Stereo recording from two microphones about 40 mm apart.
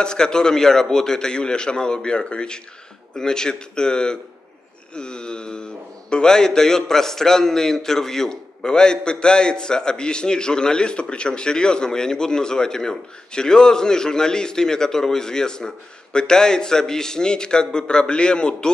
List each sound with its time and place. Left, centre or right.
0.0 s speech: centre